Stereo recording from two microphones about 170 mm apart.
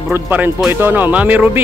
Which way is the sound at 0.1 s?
10° right (ahead or behind).